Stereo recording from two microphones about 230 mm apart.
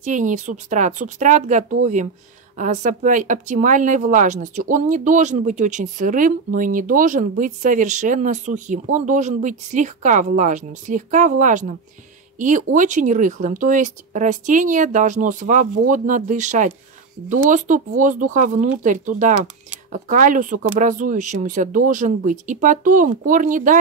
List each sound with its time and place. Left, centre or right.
0.0 s speech: right